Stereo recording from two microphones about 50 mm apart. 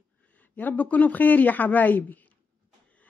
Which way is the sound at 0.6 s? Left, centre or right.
Left.